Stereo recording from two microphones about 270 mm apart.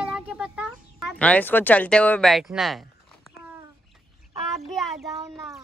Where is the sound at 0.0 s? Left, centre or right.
Centre.